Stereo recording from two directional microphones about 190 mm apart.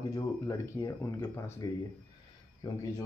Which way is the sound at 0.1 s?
20° left (ahead or behind).